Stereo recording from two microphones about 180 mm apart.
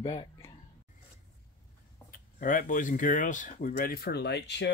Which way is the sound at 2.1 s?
50° left (ahead or behind).